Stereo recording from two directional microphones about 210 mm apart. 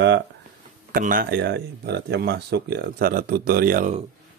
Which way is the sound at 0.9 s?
40° right (ahead or behind).